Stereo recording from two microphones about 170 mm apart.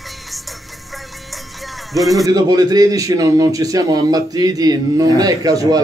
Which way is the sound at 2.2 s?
20° right (ahead or behind).